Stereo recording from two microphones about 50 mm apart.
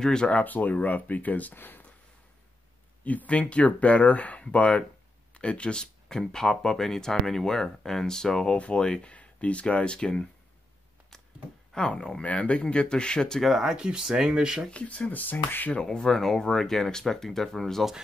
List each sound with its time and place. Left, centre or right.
0.0 s speech: centre
0.3 s speech: left
3.0 s speech: left; by 8.5 s centre
8.5 s speech: left
11.7 s speech: centre
13.4 s speech: centre
14.7 s speech: left
15.8 s speech: centre